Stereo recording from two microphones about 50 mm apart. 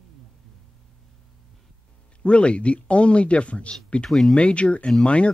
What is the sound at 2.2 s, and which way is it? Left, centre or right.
Speech, left.